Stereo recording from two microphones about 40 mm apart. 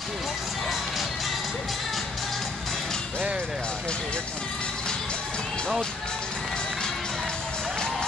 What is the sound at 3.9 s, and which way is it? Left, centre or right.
Music, left.